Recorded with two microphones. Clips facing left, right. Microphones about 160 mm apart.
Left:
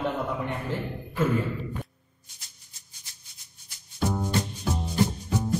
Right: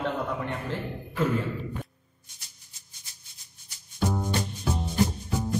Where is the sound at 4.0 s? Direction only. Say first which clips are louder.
Left 1 dB; centre (ahead or behind).